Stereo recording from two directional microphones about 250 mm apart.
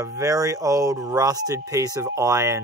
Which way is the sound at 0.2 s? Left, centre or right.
Centre.